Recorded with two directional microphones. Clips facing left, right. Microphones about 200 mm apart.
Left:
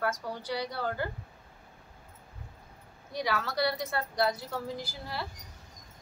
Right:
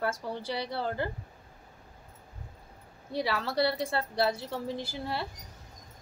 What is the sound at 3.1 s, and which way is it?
A woman's voice, 30° right (ahead or behind).